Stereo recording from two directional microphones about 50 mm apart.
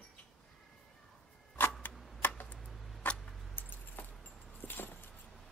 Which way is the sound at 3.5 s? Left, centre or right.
Left.